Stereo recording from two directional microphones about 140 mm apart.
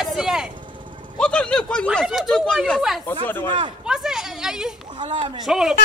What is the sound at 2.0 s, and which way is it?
Speech, centre (ahead or behind).